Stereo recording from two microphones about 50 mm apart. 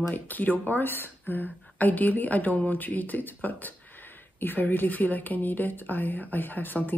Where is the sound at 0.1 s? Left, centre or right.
Left.